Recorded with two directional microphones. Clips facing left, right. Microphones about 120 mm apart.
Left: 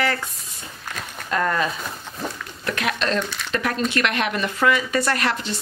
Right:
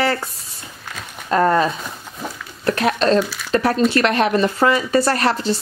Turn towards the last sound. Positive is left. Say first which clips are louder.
# right 5 dB
turn(degrees=-35)  # may be behind; listen again after turning